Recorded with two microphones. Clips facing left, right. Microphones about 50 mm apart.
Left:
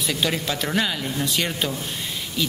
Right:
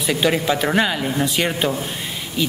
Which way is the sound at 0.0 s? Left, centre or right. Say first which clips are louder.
Right 6 dB; centre.